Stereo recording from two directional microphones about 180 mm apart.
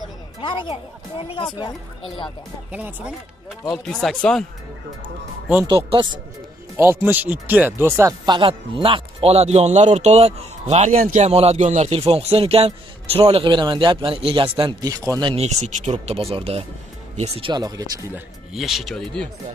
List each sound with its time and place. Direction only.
0.4 s speech: 25° left (ahead or behind)
2.7 s speech: 10° right (ahead or behind)
3.8 s speech: 5° left (ahead or behind)
5.7 s speech: 30° right (ahead or behind)
6.8 s speech: 15° right (ahead or behind); by 11.2 s 50° right (ahead or behind)
11.2 s speech: 35° right (ahead or behind)
15.3 s speech: 40° right (ahead or behind); by 18.2 s 20° right (ahead or behind)
18.5 s speech: centre (ahead or behind)